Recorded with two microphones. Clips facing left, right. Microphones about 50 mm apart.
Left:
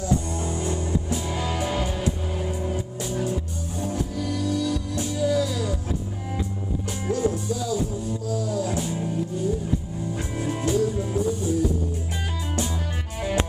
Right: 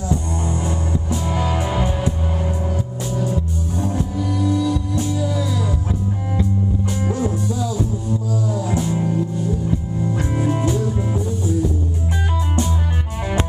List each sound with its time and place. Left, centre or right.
1.3 s music: centre
4.2 s music: centre
5.0 s music: centre
7.0 s music: centre
8.9 s music: right
10.3 s music: centre